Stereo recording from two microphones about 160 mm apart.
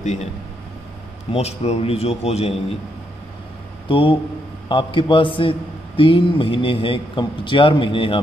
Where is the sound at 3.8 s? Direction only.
30° left (ahead or behind).